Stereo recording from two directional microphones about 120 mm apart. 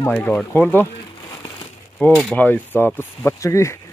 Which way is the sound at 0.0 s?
15° left (ahead or behind).